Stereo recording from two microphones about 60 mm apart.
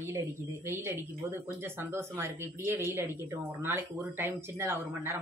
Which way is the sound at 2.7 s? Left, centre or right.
Right.